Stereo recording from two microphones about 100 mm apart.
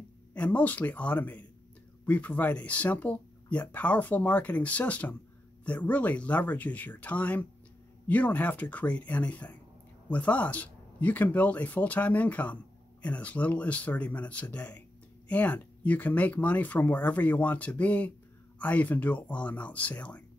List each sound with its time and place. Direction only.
0.3 s speech: 15° left (ahead or behind)